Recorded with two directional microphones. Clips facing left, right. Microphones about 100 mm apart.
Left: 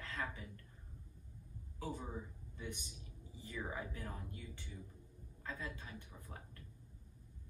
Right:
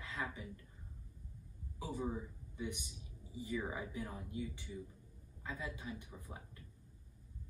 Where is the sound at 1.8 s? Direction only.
15° right (ahead or behind).